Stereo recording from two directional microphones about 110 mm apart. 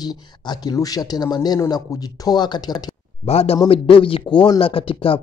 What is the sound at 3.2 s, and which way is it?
Speech, 65° left (ahead or behind).